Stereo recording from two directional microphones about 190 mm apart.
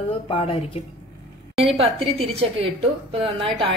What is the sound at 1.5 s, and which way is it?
A woman's voice, 30° right (ahead or behind).